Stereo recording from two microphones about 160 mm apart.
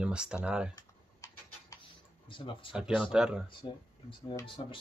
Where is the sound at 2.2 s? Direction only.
30° left (ahead or behind).